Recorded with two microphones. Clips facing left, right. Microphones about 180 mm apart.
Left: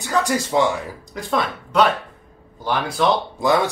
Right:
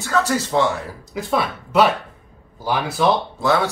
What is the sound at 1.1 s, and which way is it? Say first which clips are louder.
Speech: right 1 dB; 5° right (ahead or behind).